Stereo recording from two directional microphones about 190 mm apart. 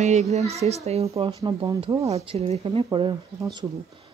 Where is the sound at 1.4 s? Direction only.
20° right (ahead or behind).